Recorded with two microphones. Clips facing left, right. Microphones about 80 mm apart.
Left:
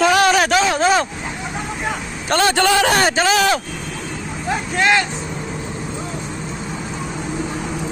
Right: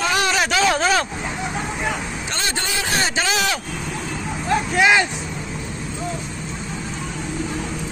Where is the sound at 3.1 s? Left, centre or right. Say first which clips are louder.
Left 6 dB; left.